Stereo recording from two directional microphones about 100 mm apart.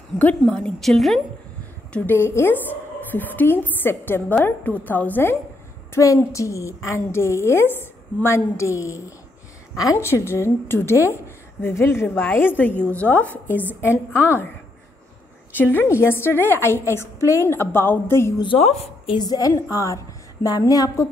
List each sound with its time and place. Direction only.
0.2 s a woman's voice: 15° left (ahead or behind)
1.9 s a woman's voice: 15° left (ahead or behind)
2.1 s a woman's voice: 25° left (ahead or behind)
6.1 s a woman's voice: 30° left (ahead or behind)
12.7 s a woman's voice: 25° right (ahead or behind)
13.1 s a woman's voice: 15° left (ahead or behind)
13.8 s a woman's voice: 15° right (ahead or behind)
15.5 s a woman's voice: 20° left (ahead or behind)
19.1 s a woman's voice: 40° left (ahead or behind)